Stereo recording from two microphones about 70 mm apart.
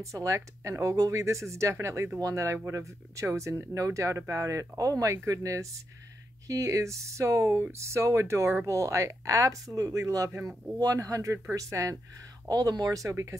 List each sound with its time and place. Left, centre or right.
0.0 s speech: right
12.4 s speech: right